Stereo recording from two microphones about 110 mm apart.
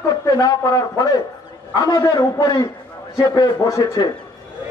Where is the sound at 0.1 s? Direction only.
35° left (ahead or behind).